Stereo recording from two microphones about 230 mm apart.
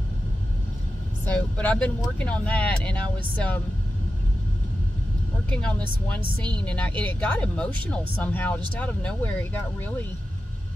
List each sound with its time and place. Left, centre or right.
1.2 s speech: centre
5.5 s speech: centre
6.2 s speech: centre
6.6 s speech: centre